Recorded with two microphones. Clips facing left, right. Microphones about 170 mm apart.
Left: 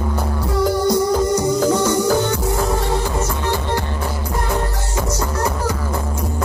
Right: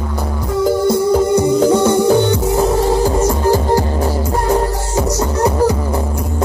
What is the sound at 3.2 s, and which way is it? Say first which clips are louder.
Music: right 8 dB; 40° right (ahead or behind).